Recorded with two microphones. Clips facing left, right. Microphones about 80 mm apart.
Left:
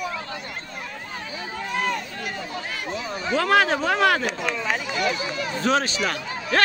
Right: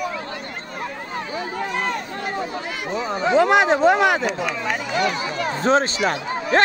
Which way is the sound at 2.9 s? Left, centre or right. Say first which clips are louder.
Right 7 dB; right.